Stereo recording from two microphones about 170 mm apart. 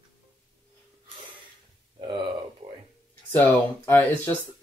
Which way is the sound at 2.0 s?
30° right (ahead or behind).